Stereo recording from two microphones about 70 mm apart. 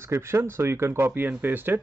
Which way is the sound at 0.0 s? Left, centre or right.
Right.